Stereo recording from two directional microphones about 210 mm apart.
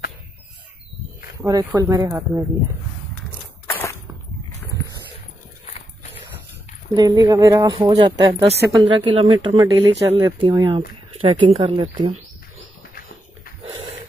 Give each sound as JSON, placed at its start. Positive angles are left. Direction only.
{"t": 1.4, "sound": "speech", "side_deg": -15}
{"t": 3.6, "sound": "a sound", "side_deg": 10}
{"t": 7.0, "sound": "speech", "side_deg": -15}